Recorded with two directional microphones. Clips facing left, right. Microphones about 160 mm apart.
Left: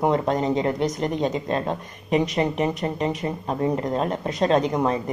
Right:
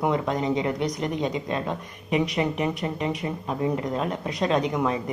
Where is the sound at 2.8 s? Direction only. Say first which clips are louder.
Left 3 dB; 35° left (ahead or behind).